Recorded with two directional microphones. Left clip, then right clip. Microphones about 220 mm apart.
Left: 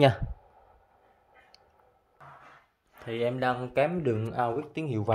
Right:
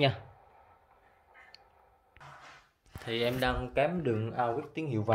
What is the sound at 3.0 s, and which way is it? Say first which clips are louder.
Speech: left 2 dB; 10° left (ahead or behind).